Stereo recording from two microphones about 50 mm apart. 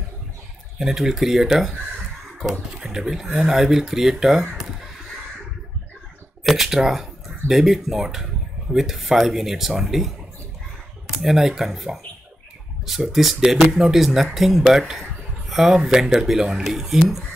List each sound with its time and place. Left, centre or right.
0.7 s speech: centre
2.8 s speech: centre
6.5 s speech: centre
11.1 s speech: centre